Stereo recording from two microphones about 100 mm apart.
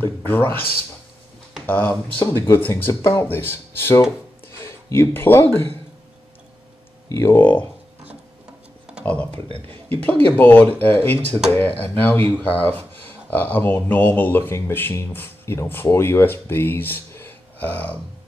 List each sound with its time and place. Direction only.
0.0 s speech: 20° left (ahead or behind)
1.7 s speech: 20° left (ahead or behind)
7.1 s speech: 25° left (ahead or behind)
9.0 s speech: 15° left (ahead or behind)